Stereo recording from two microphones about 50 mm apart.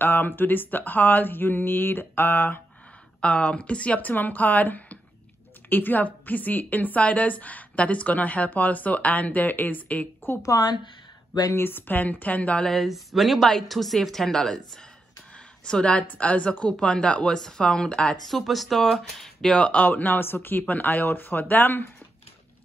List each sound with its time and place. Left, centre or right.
0.0 s a woman's voice: left
3.2 s a woman's voice: left
11.5 s a woman's voice: left
12.6 s speech: centre
15.6 s a woman's voice: centre
18.3 s speech: centre
19.5 s a woman's voice: left
19.8 s a woman's voice: left